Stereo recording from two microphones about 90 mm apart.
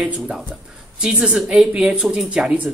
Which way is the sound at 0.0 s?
15° right (ahead or behind).